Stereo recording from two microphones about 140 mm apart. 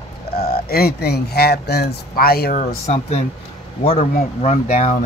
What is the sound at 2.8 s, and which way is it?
Speech, 50° left (ahead or behind).